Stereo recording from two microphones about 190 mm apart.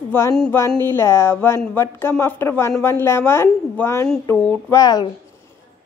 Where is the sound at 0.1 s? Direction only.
15° left (ahead or behind).